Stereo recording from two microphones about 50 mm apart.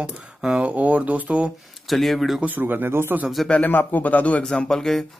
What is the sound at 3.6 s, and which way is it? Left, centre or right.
Speech, left.